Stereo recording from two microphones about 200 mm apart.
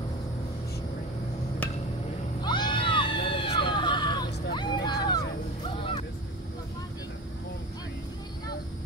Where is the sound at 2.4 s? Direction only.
20° left (ahead or behind).